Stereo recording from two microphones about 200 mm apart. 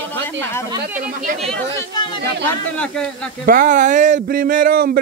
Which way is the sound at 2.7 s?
5° left (ahead or behind).